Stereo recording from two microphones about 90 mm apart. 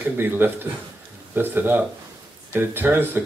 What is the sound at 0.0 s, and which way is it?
Speech, 20° right (ahead or behind).